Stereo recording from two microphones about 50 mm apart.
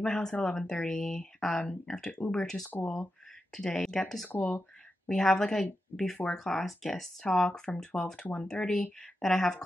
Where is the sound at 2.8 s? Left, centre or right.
Left.